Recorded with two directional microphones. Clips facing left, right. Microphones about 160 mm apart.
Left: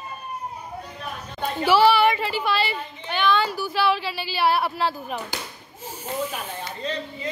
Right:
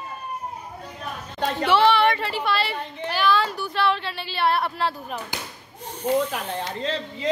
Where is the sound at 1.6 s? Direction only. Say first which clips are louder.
Left 1 dB; 5° left (ahead or behind).